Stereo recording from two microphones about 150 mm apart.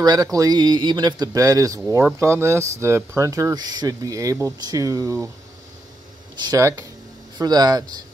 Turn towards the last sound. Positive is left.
turn(degrees=-25)  # may be behind; listen again after turning